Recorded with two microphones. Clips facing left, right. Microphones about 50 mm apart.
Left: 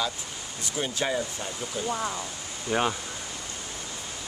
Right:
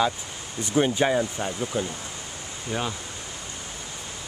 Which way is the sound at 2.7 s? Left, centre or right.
Centre.